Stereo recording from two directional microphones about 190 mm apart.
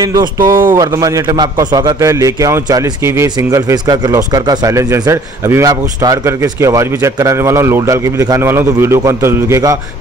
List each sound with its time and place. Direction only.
0.0 s speech: 20° right (ahead or behind)
0.4 s speech: 45° right (ahead or behind)
0.7 s a man's voice: 20° right (ahead or behind)